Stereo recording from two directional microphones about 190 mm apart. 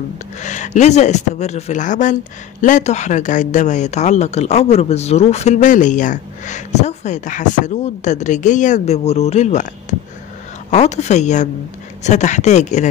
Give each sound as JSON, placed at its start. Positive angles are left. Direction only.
{"t": 0.4, "sound": "speech", "side_deg": 40}